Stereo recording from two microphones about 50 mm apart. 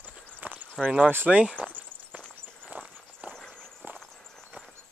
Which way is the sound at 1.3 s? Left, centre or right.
Centre.